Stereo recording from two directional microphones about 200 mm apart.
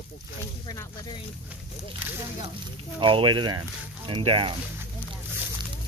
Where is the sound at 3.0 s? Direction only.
25° right (ahead or behind).